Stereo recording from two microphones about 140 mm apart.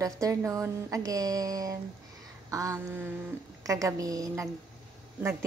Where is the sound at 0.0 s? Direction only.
25° right (ahead or behind).